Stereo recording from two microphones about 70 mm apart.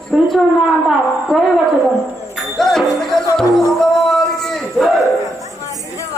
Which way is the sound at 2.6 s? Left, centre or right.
Centre.